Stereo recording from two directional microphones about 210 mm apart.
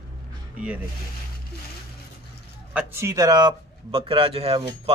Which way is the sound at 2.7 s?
10° right (ahead or behind).